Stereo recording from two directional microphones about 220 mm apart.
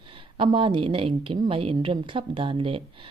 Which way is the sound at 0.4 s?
25° right (ahead or behind).